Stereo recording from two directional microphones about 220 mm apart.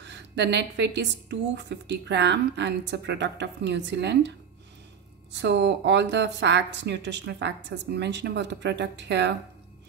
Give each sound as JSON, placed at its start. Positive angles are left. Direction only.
{"t": 0.0, "sound": "speech", "side_deg": -50}
{"t": 5.3, "sound": "speech", "side_deg": -50}